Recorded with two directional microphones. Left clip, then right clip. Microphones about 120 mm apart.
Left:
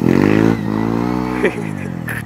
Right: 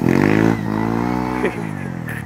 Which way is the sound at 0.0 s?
15° left (ahead or behind).